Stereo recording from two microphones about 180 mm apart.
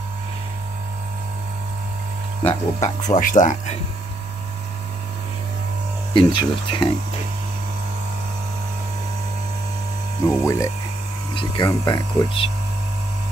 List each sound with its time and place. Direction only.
2.4 s speech: 40° left (ahead or behind)
6.1 s speech: 25° left (ahead or behind)
10.4 s speech: 15° left (ahead or behind)